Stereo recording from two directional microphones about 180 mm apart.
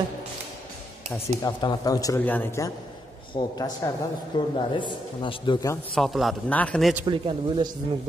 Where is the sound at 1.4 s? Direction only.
20° left (ahead or behind).